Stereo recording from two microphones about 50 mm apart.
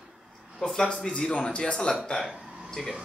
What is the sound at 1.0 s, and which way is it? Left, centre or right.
A man's voice, centre.